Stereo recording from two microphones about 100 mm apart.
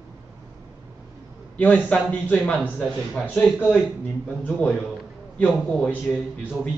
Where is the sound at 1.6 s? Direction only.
15° left (ahead or behind).